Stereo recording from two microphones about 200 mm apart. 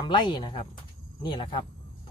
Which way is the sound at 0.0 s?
20° left (ahead or behind).